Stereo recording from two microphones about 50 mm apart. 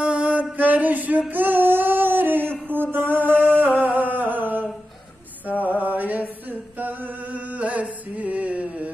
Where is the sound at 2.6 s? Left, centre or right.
Right.